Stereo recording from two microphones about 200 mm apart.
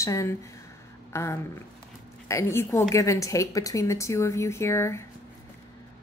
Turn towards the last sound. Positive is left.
turn(degrees=15)  # may be behind; listen again after turning